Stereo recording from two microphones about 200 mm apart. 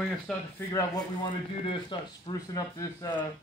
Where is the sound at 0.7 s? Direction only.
20° left (ahead or behind).